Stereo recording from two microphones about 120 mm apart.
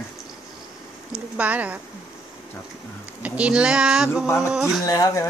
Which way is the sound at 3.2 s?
10° right (ahead or behind).